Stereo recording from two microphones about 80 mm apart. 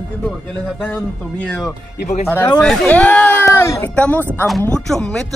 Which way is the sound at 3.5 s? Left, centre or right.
Left.